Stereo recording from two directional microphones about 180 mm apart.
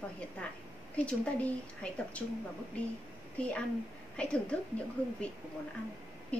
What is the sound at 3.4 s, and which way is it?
Speech, 5° left (ahead or behind).